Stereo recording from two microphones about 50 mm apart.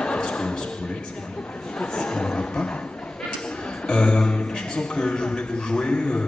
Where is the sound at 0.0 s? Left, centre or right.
Centre.